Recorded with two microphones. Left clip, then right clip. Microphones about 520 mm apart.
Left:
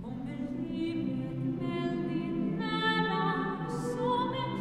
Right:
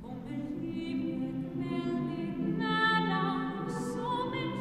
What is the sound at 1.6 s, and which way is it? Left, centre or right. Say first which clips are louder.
Music: left 1 dB; centre.